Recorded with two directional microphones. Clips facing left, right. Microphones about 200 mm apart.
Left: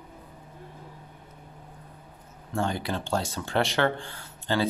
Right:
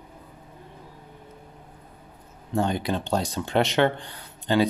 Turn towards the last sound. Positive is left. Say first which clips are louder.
# right 5 dB
turn(degrees=-15)  # may be behind; listen again after turning